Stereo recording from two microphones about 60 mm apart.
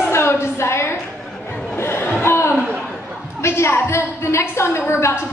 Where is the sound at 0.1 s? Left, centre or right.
Left.